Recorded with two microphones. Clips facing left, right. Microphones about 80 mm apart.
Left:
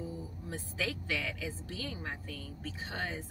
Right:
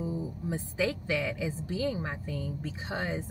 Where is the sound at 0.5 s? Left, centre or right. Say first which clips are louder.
Right 7 dB; centre.